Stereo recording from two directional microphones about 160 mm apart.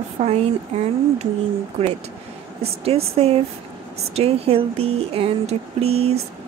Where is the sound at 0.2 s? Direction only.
45° right (ahead or behind).